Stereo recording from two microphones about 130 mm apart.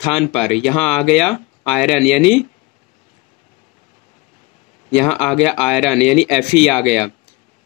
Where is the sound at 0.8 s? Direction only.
Centre (ahead or behind).